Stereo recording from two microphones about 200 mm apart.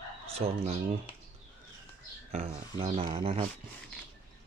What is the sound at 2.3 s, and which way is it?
Speech, 30° right (ahead or behind).